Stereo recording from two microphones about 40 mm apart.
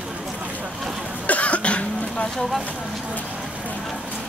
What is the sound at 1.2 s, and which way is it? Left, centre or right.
Cough, left.